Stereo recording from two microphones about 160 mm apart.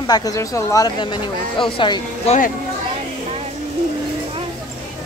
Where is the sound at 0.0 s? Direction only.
25° left (ahead or behind).